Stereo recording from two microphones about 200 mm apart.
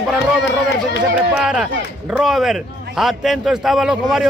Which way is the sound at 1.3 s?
5° right (ahead or behind).